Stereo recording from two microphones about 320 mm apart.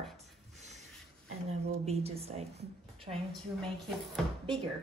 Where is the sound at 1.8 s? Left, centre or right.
Centre.